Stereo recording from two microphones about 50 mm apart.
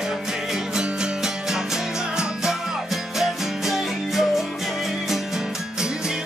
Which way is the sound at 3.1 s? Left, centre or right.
Centre.